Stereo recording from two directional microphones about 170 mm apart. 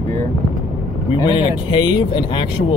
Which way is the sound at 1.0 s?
30° left (ahead or behind).